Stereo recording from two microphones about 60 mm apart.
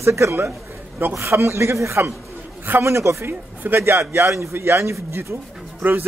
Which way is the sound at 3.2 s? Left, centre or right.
Right.